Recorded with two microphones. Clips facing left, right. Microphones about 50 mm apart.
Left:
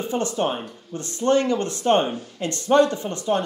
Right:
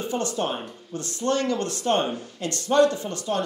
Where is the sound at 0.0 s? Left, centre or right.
Left.